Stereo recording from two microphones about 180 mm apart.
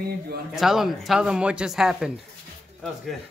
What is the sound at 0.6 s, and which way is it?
Speech, centre (ahead or behind).